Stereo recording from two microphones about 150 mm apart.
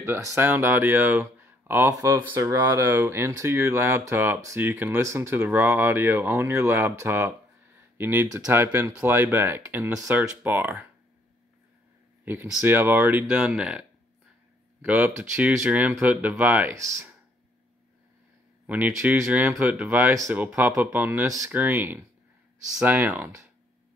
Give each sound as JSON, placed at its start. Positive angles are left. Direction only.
{"t": 0.0, "sound": "speech", "side_deg": -20}
{"t": 12.6, "sound": "speech", "side_deg": -15}
{"t": 18.7, "sound": "speech", "side_deg": -10}